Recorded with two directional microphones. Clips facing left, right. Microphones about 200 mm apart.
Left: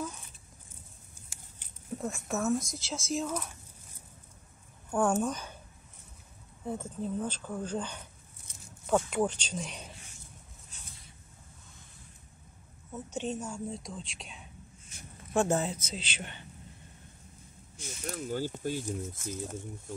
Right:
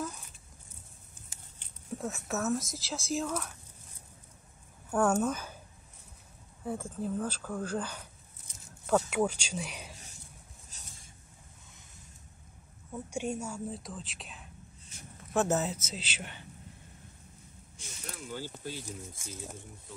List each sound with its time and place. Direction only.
2.0 s speech: centre (ahead or behind)
4.9 s speech: 5° left (ahead or behind)
5.2 s speech: 5° right (ahead or behind)
6.6 s speech: 5° right (ahead or behind)
8.6 s a sound: centre (ahead or behind)
9.1 s speech: 10° right (ahead or behind)
13.1 s speech: 10° right (ahead or behind)
18.0 s speech: 45° left (ahead or behind)
19.1 s speech: 10° right (ahead or behind)